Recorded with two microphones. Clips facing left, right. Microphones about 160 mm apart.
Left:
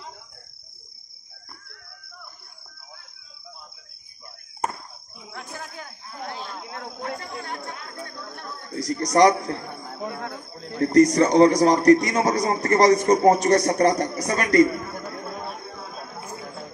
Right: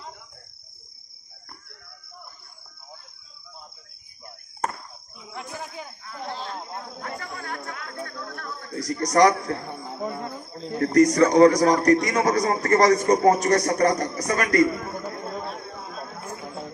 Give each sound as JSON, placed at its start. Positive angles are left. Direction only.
{"t": 5.3, "sound": "cricket", "side_deg": -15}
{"t": 7.0, "sound": "a man's voice", "side_deg": 25}
{"t": 10.9, "sound": "a man's voice", "side_deg": 25}